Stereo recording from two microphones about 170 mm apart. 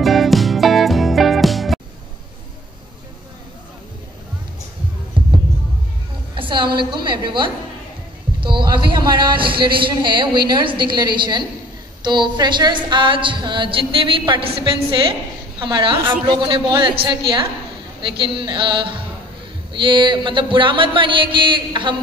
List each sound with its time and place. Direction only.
0.0 s music: centre (ahead or behind)
5.2 s heart sounds: 30° right (ahead or behind)
6.3 s a woman's voice: 30° right (ahead or behind)
18.0 s speech: 30° right (ahead or behind)